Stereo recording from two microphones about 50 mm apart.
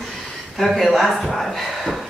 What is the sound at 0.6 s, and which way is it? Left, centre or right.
A woman's voice, centre.